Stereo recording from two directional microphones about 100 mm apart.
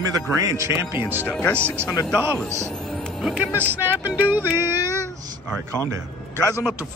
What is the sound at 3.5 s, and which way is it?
Speech, 20° right (ahead or behind).